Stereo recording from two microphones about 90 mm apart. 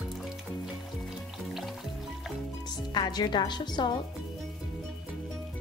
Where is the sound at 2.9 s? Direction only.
50° left (ahead or behind).